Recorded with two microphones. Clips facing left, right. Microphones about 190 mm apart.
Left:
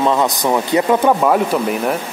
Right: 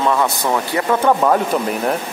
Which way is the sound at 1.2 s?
5° left (ahead or behind).